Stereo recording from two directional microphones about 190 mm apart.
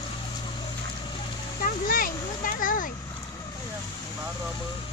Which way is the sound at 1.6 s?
50° left (ahead or behind).